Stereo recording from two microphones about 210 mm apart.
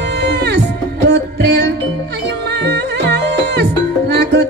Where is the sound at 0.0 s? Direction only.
55° right (ahead or behind).